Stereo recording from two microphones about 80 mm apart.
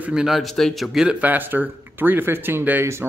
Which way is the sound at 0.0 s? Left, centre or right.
Centre.